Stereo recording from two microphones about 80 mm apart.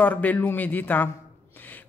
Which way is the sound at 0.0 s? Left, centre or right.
Left.